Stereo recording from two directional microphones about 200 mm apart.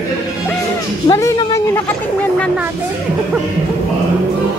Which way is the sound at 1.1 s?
15° left (ahead or behind).